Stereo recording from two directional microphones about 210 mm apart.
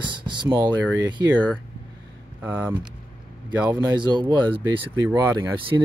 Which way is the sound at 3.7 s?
20° right (ahead or behind).